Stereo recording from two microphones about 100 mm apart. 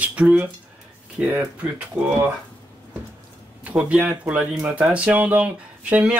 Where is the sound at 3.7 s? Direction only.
15° right (ahead or behind).